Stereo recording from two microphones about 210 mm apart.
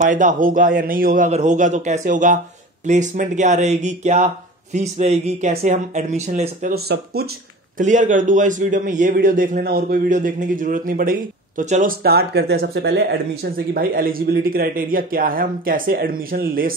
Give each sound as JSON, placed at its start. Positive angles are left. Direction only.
{"t": 0.0, "sound": "a man's voice", "side_deg": -35}
{"t": 6.7, "sound": "speech", "side_deg": -50}
{"t": 7.7, "sound": "a man's voice", "side_deg": -35}